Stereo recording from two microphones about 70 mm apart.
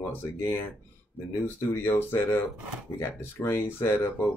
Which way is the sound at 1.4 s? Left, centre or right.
Left.